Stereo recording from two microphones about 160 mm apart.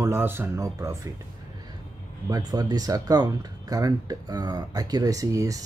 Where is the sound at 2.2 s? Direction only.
25° right (ahead or behind).